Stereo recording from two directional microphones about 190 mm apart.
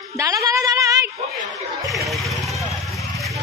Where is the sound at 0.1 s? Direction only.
15° right (ahead or behind).